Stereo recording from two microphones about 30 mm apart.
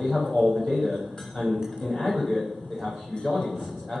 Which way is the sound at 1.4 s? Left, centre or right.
Centre.